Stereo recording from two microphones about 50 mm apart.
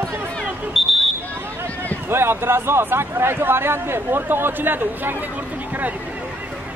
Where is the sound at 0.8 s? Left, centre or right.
Centre.